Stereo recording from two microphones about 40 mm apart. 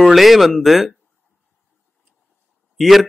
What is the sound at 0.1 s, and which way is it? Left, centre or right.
Speech, centre.